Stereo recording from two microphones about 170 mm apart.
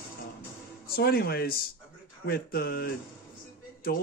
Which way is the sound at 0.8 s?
65° left (ahead or behind).